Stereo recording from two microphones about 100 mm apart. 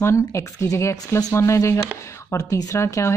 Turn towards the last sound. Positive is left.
turn(degrees=30)  # may be behind; listen again after turning